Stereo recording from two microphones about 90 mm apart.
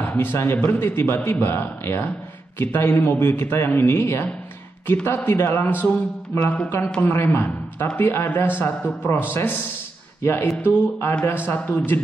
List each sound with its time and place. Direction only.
0.0 s a man's voice: 25° left (ahead or behind)
10.6 s a man's voice: 25° left (ahead or behind)